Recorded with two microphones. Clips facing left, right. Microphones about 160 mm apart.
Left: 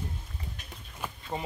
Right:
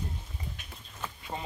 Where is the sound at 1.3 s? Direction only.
15° left (ahead or behind).